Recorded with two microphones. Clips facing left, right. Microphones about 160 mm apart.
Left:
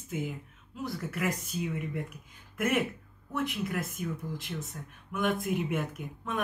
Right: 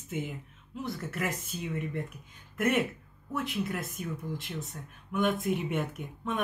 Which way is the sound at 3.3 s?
Centre (ahead or behind).